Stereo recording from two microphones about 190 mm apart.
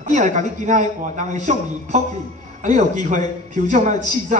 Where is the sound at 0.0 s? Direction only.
40° right (ahead or behind).